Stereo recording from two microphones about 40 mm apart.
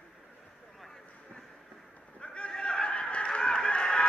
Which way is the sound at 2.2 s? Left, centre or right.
Left.